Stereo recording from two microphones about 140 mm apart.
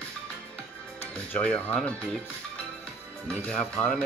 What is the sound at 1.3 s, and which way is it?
Speech, 10° left (ahead or behind).